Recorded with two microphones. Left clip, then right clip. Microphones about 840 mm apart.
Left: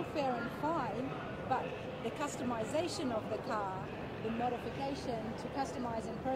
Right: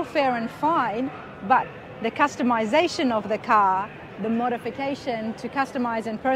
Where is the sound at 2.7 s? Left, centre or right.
Right.